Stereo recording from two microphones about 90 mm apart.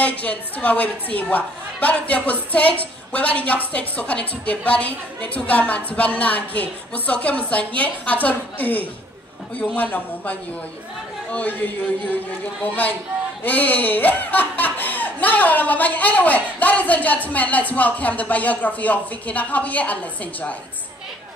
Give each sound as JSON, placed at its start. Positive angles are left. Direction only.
{"t": 0.0, "sound": "a man's voice", "side_deg": 15}
{"t": 11.3, "sound": "a man's voice", "side_deg": 20}